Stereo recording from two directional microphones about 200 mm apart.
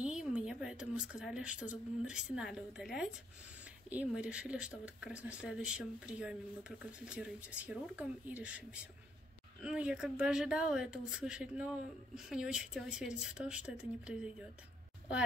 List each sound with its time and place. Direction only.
0.0 s a woman's voice: 5° right (ahead or behind)